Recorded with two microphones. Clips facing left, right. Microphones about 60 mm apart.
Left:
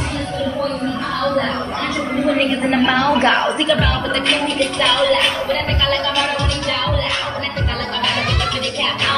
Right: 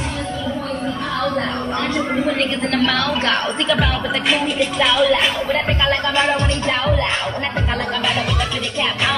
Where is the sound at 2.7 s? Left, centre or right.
Left.